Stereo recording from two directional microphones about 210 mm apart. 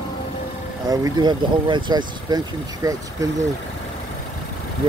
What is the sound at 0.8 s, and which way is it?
Speech, 15° right (ahead or behind).